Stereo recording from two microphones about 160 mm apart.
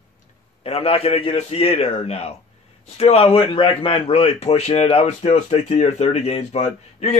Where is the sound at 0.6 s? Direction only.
40° left (ahead or behind).